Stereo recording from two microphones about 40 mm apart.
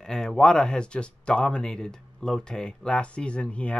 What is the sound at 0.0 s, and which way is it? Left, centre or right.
Speech, centre.